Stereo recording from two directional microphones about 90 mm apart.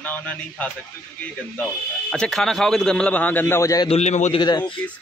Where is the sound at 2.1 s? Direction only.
5° left (ahead or behind); by 3.5 s 20° left (ahead or behind).